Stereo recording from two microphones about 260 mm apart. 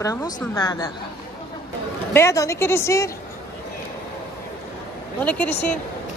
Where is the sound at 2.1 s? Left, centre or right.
Centre.